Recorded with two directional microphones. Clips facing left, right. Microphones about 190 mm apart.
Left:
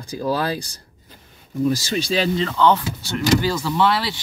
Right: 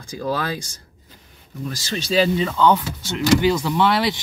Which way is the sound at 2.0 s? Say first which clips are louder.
Right 5 dB; 5° right (ahead or behind).